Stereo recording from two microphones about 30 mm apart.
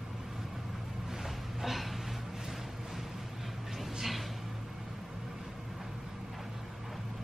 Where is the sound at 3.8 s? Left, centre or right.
Centre.